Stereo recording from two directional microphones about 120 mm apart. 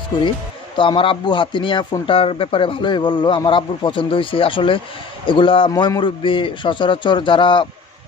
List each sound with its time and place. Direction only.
0.7 s speech: 45° left (ahead or behind)
5.7 s speech: 35° left (ahead or behind)